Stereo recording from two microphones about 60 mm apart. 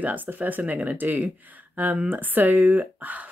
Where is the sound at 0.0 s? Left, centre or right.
Right.